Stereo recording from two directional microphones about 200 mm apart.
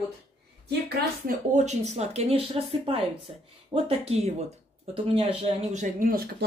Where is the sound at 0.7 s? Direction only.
50° right (ahead or behind).